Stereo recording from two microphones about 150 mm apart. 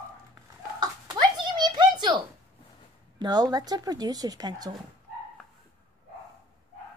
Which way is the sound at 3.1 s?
25° right (ahead or behind).